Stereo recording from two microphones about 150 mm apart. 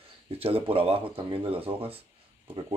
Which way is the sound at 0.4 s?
40° right (ahead or behind).